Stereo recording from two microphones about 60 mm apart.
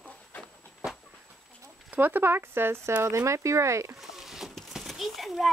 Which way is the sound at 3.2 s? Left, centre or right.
Right.